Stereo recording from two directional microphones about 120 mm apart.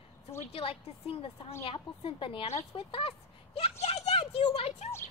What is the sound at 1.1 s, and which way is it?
A woman's voice, 50° left (ahead or behind).